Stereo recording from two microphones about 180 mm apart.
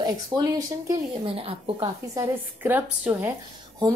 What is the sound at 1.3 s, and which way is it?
Speech, 30° right (ahead or behind).